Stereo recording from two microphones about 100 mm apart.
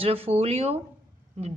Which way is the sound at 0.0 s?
75° right (ahead or behind).